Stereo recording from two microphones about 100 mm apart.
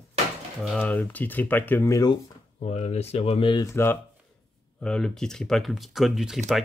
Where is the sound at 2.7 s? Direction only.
90° left; by 3.5 s 70° left (ahead or behind).